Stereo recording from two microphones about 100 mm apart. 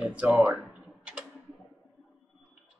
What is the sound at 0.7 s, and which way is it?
Tick-tock, 10° right (ahead or behind).